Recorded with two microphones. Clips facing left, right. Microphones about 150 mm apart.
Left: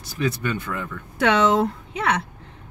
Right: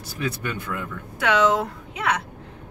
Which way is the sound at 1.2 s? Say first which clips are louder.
Left 2 dB; 25° left (ahead or behind).